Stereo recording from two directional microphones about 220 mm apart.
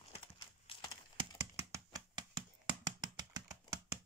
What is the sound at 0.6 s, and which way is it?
Horse, 20° left (ahead or behind).